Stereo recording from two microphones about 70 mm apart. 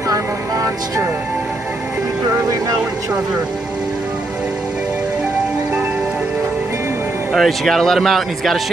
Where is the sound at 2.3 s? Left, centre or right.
Right.